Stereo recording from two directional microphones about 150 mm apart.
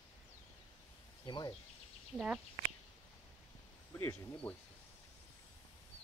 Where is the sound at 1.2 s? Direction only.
30° left (ahead or behind).